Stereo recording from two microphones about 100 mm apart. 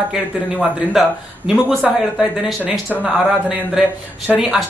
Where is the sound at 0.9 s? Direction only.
5° right (ahead or behind).